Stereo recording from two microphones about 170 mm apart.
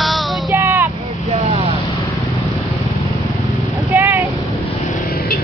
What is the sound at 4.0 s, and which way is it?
Vehicle, 10° right (ahead or behind).